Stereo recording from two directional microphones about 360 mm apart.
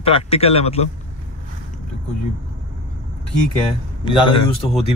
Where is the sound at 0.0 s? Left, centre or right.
Centre.